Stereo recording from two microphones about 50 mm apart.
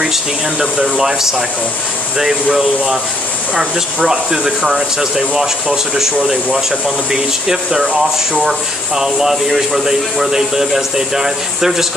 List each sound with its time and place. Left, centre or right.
0.0 s speech: centre
7.1 s speech: centre